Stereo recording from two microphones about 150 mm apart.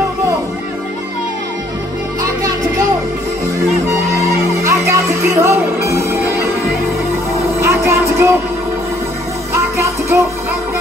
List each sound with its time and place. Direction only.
4.6 s music: 20° right (ahead or behind)
7.4 s music: 20° right (ahead or behind)
9.8 s music: 20° right (ahead or behind)